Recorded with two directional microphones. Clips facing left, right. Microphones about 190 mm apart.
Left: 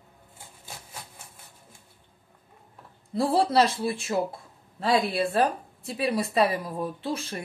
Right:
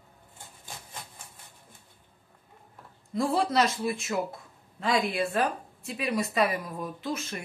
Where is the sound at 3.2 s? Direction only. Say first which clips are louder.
Left 3 dB; 30° left (ahead or behind).